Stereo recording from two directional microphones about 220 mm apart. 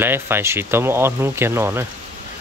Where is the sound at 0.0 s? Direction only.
10° right (ahead or behind).